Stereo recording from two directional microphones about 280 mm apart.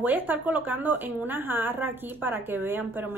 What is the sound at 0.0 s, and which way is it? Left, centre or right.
A woman's voice, centre.